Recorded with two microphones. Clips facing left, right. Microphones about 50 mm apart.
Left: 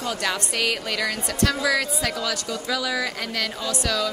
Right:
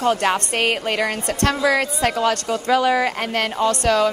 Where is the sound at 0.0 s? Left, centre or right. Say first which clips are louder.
Right 8 dB; right.